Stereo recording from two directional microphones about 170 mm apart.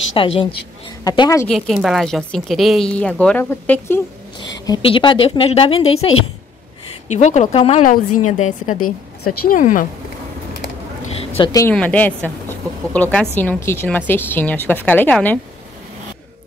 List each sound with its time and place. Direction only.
0.1 s a woman's voice: 30° left (ahead or behind)
1.5 s speech: centre (ahead or behind)
4.6 s speech: 30° left (ahead or behind)
7.2 s speech: 45° left (ahead or behind)
11.3 s a woman's voice: 30° left (ahead or behind)
11.6 s a woman's voice: 10° left (ahead or behind)